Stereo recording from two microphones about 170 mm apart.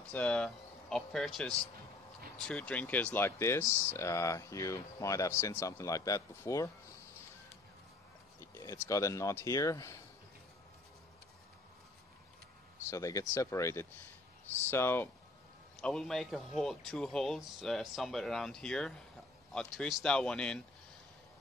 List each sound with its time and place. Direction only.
0.0 s speech: 5° left (ahead or behind)
8.5 s speech: 20° left (ahead or behind)
12.9 s speech: 20° left (ahead or behind)